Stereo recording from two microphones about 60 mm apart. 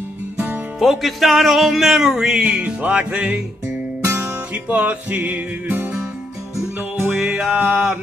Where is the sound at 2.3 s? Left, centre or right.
Centre.